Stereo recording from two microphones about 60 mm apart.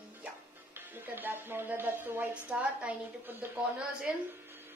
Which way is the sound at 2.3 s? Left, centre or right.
Centre.